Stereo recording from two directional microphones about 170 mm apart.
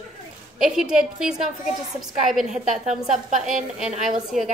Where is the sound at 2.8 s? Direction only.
45° right (ahead or behind).